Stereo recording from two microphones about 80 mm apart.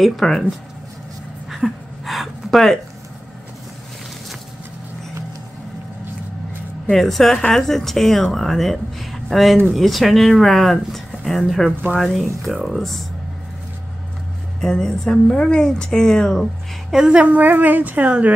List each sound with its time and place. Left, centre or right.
0.0 s speech: centre
1.5 s a sound: centre
6.9 s speech: centre
14.6 s speech: centre
16.9 s a woman's voice: centre